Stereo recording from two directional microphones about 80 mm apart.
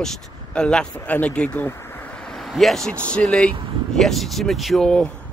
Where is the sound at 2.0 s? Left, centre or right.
Centre.